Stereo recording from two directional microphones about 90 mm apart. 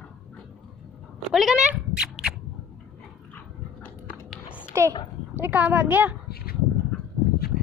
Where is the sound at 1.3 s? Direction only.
5° right (ahead or behind).